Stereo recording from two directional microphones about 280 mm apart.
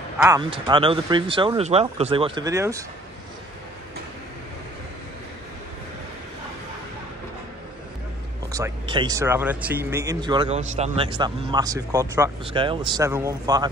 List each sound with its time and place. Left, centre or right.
0.2 s speech: centre
8.5 s speech: centre